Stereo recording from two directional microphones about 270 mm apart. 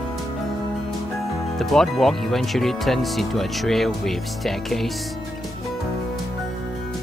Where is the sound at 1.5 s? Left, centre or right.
Centre.